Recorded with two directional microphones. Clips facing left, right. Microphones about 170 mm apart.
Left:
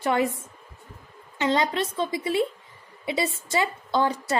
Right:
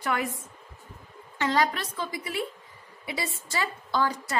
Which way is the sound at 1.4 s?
25° left (ahead or behind).